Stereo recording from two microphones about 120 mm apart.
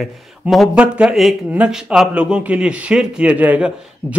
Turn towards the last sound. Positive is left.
turn(degrees=-10)  # may be behind; listen again after turning